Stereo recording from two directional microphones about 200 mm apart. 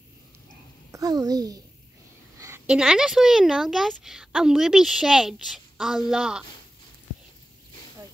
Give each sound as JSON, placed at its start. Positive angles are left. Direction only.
{"t": 0.9, "sound": "a child's voice", "side_deg": -20}